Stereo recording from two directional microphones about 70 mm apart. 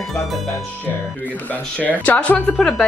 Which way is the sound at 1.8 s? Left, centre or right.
Left.